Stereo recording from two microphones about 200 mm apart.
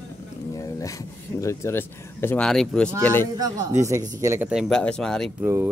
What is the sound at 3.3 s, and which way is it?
Speech, 20° right (ahead or behind).